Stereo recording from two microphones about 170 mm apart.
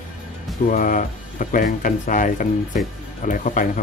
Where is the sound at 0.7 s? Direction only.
50° left (ahead or behind).